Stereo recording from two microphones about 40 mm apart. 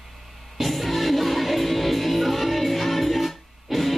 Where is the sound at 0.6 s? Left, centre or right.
Centre.